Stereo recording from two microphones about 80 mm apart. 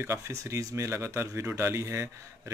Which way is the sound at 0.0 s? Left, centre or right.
Right.